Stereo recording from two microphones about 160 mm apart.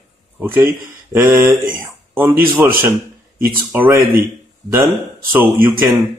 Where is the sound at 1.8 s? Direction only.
15° right (ahead or behind).